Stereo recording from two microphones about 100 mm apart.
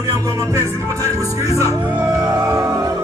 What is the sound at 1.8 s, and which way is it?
Music, 15° right (ahead or behind).